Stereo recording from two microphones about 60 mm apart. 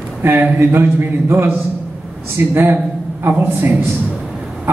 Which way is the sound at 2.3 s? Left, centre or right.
Right.